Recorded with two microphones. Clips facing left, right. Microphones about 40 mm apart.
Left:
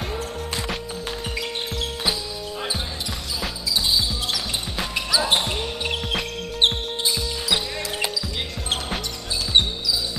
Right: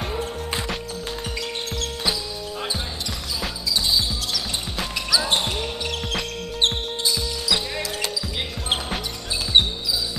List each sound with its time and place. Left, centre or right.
3.9 s basketball bounce: centre
6.6 s music: left